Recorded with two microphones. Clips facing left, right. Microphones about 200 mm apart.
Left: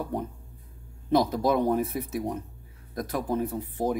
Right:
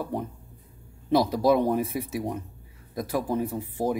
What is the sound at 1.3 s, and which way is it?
Speech, 10° right (ahead or behind).